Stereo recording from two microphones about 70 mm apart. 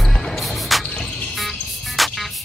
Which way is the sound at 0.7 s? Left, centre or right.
Centre.